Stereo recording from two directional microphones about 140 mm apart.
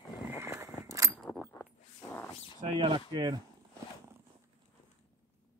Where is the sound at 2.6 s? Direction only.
45° right (ahead or behind).